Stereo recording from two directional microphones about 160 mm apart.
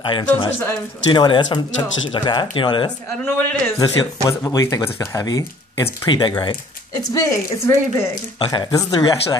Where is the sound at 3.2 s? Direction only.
10° left (ahead or behind).